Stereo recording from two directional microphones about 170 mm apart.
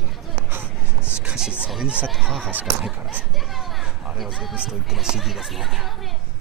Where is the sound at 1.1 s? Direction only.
5° right (ahead or behind).